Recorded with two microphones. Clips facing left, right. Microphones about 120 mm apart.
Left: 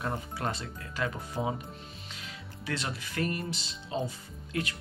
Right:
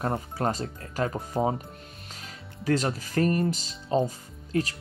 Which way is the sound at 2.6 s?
40° right (ahead or behind).